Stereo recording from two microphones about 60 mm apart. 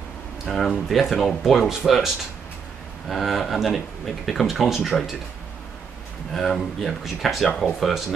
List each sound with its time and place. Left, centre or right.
0.5 s speech: centre
3.1 s speech: centre
6.3 s speech: centre